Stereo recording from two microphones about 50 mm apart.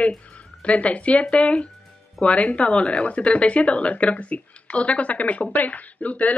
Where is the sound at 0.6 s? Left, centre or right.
Left.